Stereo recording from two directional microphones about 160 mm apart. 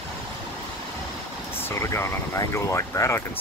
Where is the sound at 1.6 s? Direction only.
15° left (ahead or behind).